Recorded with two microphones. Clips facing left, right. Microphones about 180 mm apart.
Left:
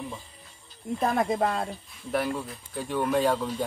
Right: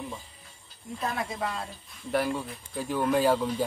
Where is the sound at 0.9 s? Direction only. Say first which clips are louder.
Left 7 dB; 50° left (ahead or behind).